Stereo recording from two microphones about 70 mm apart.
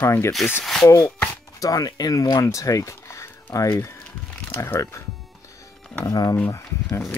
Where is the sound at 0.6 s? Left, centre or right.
Centre.